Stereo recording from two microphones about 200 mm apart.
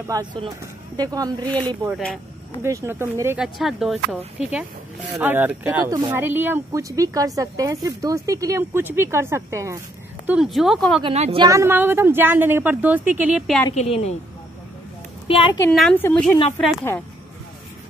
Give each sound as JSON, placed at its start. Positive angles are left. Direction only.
{"t": 0.0, "sound": "speech", "side_deg": -20}
{"t": 1.9, "sound": "speech", "side_deg": 0}
{"t": 2.6, "sound": "speech", "side_deg": -10}
{"t": 11.0, "sound": "speech", "side_deg": -30}
{"t": 11.4, "sound": "speech", "side_deg": -15}
{"t": 13.7, "sound": "a woman's voice", "side_deg": 30}
{"t": 15.2, "sound": "a woman's voice", "side_deg": 25}
{"t": 15.7, "sound": "a woman's voice", "side_deg": 0}